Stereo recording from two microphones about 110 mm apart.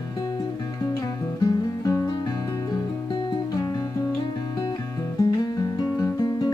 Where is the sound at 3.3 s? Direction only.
35° left (ahead or behind).